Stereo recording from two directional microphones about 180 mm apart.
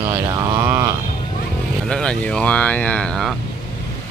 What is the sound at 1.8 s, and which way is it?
Speech, 5° left (ahead or behind).